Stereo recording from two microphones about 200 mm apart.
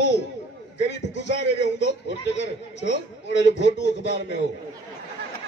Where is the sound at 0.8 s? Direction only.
60° left (ahead or behind).